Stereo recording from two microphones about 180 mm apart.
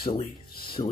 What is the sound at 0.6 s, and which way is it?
Music, 30° left (ahead or behind).